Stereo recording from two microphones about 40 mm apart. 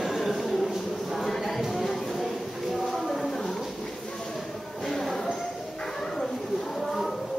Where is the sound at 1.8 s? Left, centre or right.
Centre.